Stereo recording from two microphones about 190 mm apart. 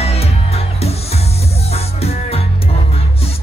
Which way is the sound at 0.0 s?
30° left (ahead or behind).